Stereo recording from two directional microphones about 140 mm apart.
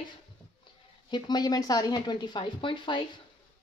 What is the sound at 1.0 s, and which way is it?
Speech, 30° left (ahead or behind).